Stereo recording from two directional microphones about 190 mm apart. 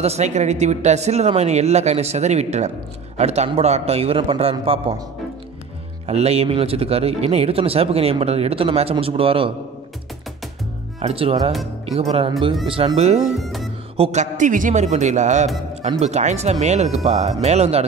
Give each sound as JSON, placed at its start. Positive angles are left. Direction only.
{"t": 0.0, "sound": "speech", "side_deg": -35}
{"t": 6.0, "sound": "speech", "side_deg": -35}
{"t": 11.0, "sound": "speech", "side_deg": -30}
{"t": 13.4, "sound": "music", "side_deg": 0}
{"t": 13.9, "sound": "speech", "side_deg": -35}